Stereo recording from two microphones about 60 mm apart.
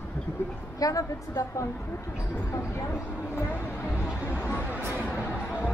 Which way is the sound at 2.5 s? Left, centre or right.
Left.